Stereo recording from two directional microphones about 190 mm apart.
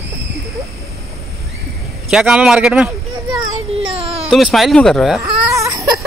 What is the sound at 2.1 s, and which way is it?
Speech, 5° right (ahead or behind).